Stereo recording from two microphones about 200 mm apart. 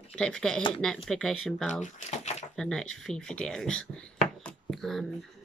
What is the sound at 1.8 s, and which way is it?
Speech, 35° left (ahead or behind).